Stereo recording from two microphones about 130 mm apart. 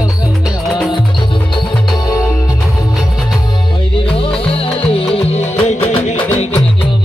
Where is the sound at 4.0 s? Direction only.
45° left (ahead or behind); by 6.1 s 60° left (ahead or behind).